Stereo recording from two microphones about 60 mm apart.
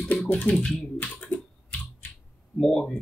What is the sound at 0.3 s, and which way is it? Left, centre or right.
Typing, left.